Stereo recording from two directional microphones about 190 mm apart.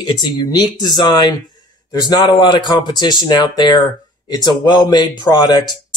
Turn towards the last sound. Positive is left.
turn(degrees=20)  # may be behind; listen again after turning